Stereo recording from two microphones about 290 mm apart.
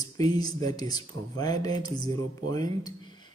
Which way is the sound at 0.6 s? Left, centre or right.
Centre.